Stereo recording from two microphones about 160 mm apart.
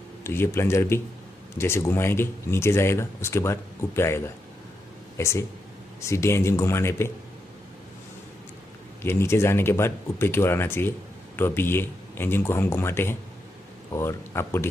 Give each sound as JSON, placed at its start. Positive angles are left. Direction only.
{"t": 0.2, "sound": "speech", "side_deg": 15}
{"t": 9.0, "sound": "speech", "side_deg": 15}